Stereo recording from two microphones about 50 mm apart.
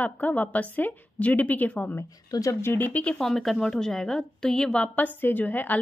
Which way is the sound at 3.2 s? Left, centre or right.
Centre.